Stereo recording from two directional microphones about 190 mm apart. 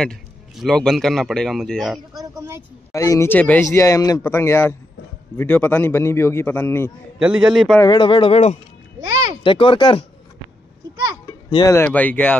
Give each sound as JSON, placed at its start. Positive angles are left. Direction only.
{"t": 0.0, "sound": "speech", "side_deg": 5}
{"t": 2.1, "sound": "speech", "side_deg": -20}
{"t": 2.9, "sound": "speech", "side_deg": 15}
{"t": 7.2, "sound": "speech", "side_deg": -5}
{"t": 7.8, "sound": "speech", "side_deg": 25}
{"t": 9.0, "sound": "a sound", "side_deg": -20}
{"t": 9.4, "sound": "speech", "side_deg": 25}
{"t": 11.5, "sound": "speech", "side_deg": 15}